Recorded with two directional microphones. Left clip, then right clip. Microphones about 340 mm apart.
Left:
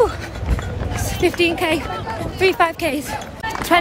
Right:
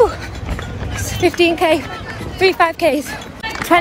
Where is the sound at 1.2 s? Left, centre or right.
Centre.